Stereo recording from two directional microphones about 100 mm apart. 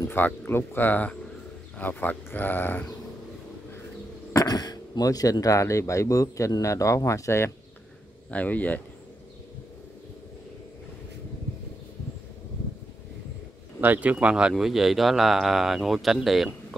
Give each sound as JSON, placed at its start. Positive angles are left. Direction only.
{"t": 0.1, "sound": "speech", "side_deg": 20}
{"t": 4.3, "sound": "speech", "side_deg": 40}
{"t": 8.3, "sound": "speech", "side_deg": 15}
{"t": 13.7, "sound": "speech", "side_deg": -15}